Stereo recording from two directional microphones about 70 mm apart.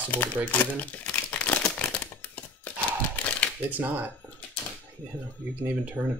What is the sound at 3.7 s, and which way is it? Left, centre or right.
Speech, right.